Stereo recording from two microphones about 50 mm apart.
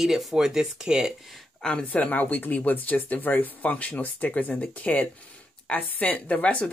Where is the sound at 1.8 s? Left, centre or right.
Left.